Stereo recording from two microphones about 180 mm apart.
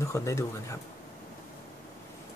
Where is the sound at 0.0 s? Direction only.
15° left (ahead or behind).